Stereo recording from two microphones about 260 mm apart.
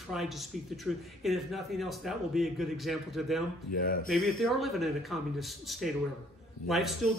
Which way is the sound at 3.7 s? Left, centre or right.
Left.